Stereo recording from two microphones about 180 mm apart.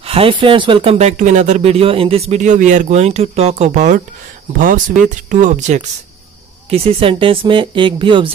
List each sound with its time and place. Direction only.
0.0 s speech: 30° right (ahead or behind)
6.7 s speech: 30° right (ahead or behind)